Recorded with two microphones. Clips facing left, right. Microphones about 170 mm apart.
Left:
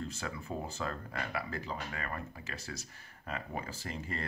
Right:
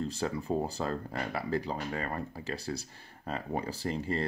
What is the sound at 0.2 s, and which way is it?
Speech, 35° right (ahead or behind).